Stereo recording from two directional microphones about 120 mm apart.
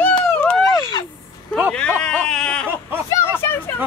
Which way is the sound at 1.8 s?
10° left (ahead or behind).